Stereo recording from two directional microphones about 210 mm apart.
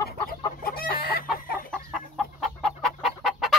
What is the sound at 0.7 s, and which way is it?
Chicken, 45° left (ahead or behind).